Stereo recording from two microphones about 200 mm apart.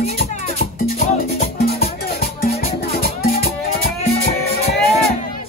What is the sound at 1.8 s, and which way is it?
Music, 50° left (ahead or behind).